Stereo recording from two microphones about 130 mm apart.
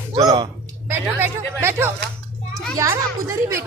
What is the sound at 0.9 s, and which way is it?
A woman's voice, 15° right (ahead or behind).